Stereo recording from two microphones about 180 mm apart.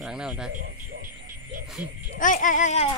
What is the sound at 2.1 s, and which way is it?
Speech, 45° left (ahead or behind).